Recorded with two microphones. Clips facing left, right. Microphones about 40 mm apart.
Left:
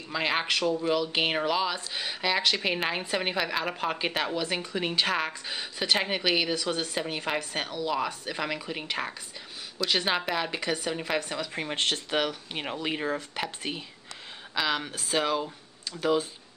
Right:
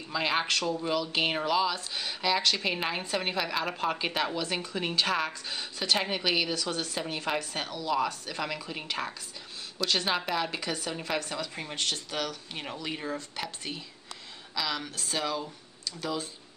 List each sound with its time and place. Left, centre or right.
0.1 s speech: centre
11.5 s speech: left